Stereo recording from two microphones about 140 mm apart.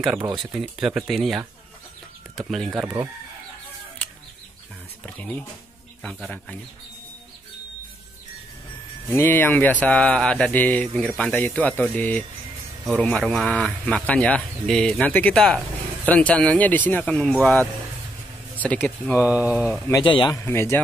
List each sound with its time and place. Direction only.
0.4 s speech: 5° right (ahead or behind)
2.8 s speech: 15° right (ahead or behind)
5.0 s mantra: 10° left (ahead or behind)
6.0 s speech: 5° left (ahead or behind)
9.1 s mantra: 15° left (ahead or behind)
18.6 s mantra: 10° left (ahead or behind)
19.2 s speech: 10° right (ahead or behind)
20.0 s a man's voice: 35° left (ahead or behind)
20.3 s speech: 20° left (ahead or behind)